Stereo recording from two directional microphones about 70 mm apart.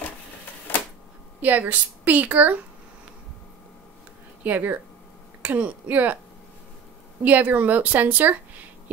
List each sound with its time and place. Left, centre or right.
1.4 s a woman's voice: right
4.4 s speech: right
7.2 s speech: right